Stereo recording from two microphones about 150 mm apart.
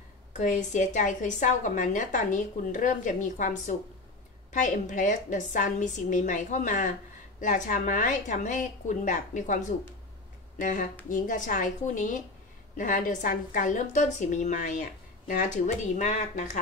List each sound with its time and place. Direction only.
0.4 s a woman's voice: 55° left (ahead or behind)